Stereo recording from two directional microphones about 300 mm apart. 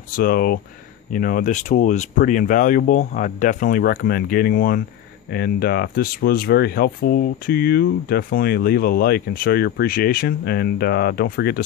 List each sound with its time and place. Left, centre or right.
0.1 s speech: left